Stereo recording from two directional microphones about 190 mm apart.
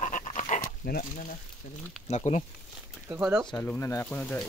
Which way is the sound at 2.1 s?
35° left (ahead or behind).